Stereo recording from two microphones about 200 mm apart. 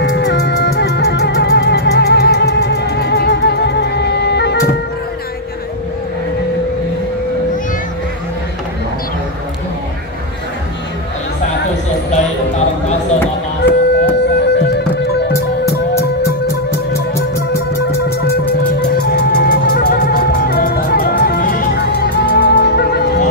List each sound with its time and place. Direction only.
0.1 s music: 60° left (ahead or behind)
13.7 s music: 55° left (ahead or behind)
19.1 s music: 50° left (ahead or behind)